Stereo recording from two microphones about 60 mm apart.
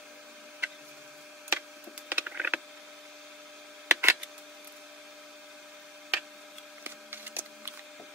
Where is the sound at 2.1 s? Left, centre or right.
Right.